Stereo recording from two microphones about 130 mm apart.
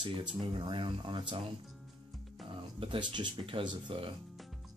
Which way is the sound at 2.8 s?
40° right (ahead or behind).